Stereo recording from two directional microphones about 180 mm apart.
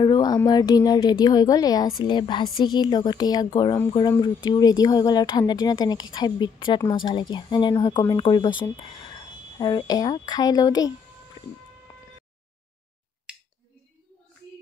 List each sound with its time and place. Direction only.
0.0 s speech: 25° left (ahead or behind)
13.3 s finger snapping: 5° right (ahead or behind)